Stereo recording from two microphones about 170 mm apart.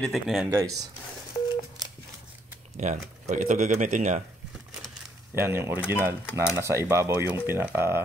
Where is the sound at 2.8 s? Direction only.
45° right (ahead or behind).